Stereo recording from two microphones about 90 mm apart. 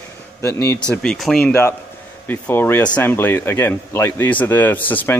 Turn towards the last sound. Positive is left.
turn(degrees=20)  # may be behind; listen again after turning